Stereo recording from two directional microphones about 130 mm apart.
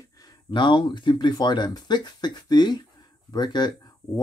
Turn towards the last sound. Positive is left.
turn(degrees=35)  # may be behind; listen again after turning